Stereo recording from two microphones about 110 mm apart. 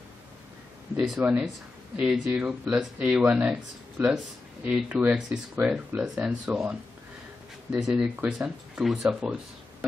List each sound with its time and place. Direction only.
0.9 s speech: 5° right (ahead or behind)
4.6 s speech: 15° right (ahead or behind)